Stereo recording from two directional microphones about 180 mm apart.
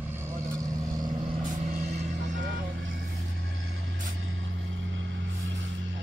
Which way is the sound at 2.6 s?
50° right (ahead or behind).